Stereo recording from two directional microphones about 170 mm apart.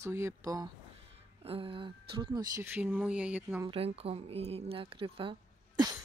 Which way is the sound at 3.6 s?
35° right (ahead or behind).